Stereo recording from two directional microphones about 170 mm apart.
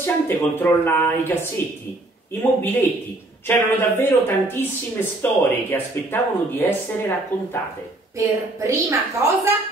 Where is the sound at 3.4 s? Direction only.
15° left (ahead or behind).